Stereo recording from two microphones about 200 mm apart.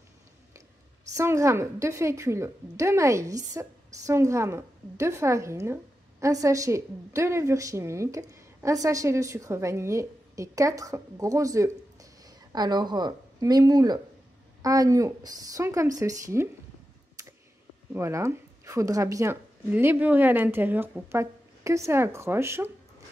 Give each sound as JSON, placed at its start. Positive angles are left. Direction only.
{"t": 1.1, "sound": "a woman's voice", "side_deg": -15}
{"t": 17.2, "sound": "a sound", "side_deg": -15}
{"t": 17.9, "sound": "a woman's voice", "side_deg": -15}